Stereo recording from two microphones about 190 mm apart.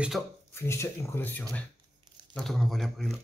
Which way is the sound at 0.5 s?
15° left (ahead or behind).